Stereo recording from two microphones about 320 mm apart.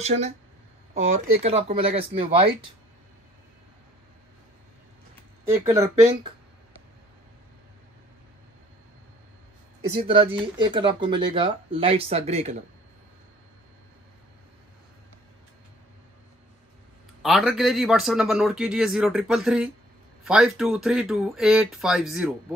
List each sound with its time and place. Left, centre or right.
0.0 s speech: centre
5.5 s speech: centre
10.0 s speech: centre
17.2 s a man's voice: centre